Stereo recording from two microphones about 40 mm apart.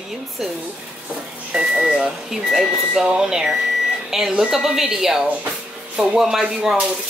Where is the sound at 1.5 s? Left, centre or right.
Centre.